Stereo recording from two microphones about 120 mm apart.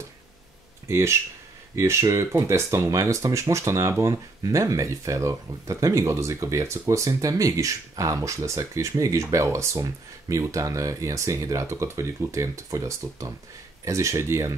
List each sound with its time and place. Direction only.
0.8 s speech: 20° right (ahead or behind)